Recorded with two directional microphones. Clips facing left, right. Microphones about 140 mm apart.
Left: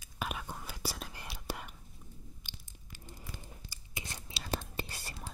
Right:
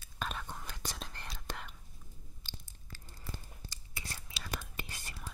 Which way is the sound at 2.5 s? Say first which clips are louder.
Right 2 dB; 15° left (ahead or behind).